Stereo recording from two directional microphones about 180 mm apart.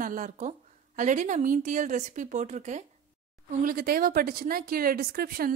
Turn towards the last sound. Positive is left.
turn(degrees=-55)  # may be behind; listen again after turning